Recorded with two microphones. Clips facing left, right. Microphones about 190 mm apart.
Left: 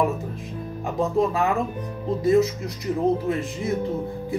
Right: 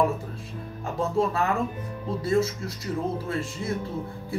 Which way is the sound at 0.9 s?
15° left (ahead or behind).